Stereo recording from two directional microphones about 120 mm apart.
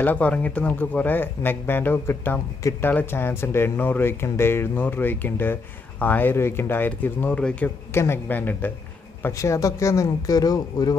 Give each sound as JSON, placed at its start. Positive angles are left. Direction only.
{"t": 0.0, "sound": "speech", "side_deg": 10}
{"t": 9.2, "sound": "speech", "side_deg": 25}